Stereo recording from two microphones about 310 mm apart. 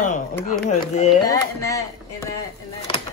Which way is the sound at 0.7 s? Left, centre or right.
Left.